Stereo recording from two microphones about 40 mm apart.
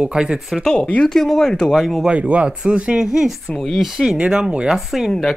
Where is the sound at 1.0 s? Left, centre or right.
Centre.